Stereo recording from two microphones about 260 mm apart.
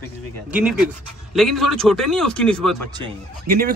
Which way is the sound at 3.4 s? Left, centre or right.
Right.